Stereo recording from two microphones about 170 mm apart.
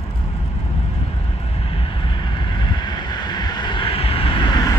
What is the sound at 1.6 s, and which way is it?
Vehicle, 30° left (ahead or behind).